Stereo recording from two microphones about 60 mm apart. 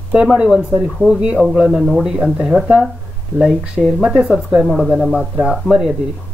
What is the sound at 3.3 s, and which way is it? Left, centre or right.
Speech, centre.